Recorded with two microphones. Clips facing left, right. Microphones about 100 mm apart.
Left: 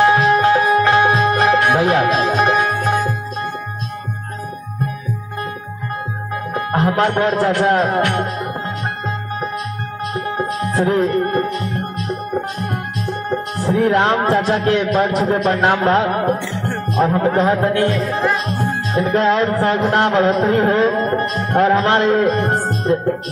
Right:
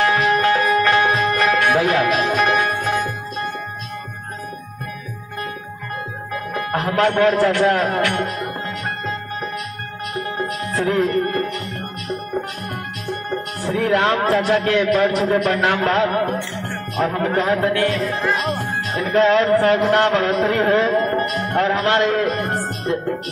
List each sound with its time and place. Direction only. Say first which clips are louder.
0.0 s music: left 4 dB; 25° left (ahead or behind)
6.5 s music: left 5 dB; 30° left (ahead or behind)
6.9 s speech: right 2 dB; 25° left (ahead or behind)
10.1 s music: left 3 dB; 30° left (ahead or behind)
13.6 s a man's voice: left 3 dB; 30° left (ahead or behind)
19.0 s speech: right 1 dB; 20° left (ahead or behind)
19.3 s a man's voice: right 1 dB; 35° left (ahead or behind)